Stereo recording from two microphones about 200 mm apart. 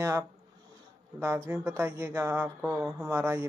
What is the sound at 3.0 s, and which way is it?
Speech, 10° right (ahead or behind).